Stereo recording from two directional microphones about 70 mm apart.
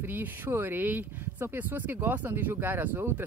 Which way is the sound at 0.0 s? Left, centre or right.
Right.